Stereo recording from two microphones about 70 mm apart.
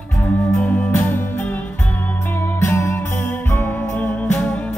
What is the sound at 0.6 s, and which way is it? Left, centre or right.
Music, centre.